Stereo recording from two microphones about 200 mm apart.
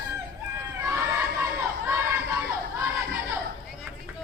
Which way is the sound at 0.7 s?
15° right (ahead or behind).